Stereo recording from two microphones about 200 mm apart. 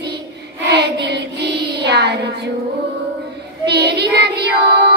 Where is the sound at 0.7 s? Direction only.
60° right (ahead or behind).